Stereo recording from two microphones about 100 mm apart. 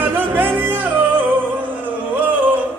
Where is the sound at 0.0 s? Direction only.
20° right (ahead or behind).